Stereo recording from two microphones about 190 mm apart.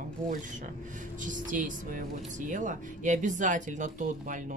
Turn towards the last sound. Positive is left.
turn(degrees=-40)  # may be behind; listen again after turning